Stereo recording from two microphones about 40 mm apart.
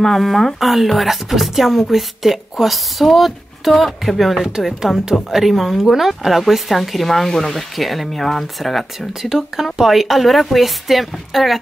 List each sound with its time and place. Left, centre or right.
0.0 s speech: centre